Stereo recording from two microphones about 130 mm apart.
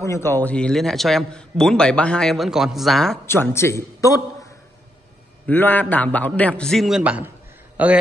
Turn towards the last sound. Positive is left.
turn(degrees=-10)  # may be behind; listen again after turning